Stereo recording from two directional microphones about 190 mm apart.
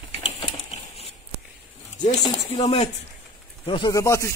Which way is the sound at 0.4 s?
30° left (ahead or behind).